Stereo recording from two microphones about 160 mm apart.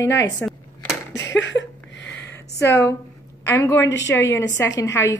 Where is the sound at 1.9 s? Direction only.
90° left.